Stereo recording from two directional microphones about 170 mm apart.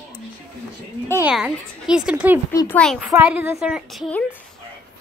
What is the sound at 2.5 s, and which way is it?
Speech, 10° left (ahead or behind).